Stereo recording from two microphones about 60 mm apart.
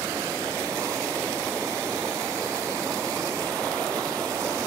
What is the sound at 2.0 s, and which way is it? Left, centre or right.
Waterfall, right.